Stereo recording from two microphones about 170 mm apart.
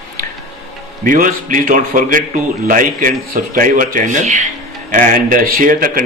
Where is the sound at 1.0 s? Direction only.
55° right (ahead or behind).